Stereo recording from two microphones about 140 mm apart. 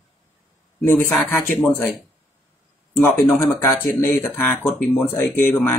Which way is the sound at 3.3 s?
15° left (ahead or behind).